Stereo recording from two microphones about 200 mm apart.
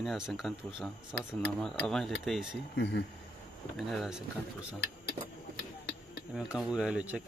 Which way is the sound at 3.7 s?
Centre (ahead or behind).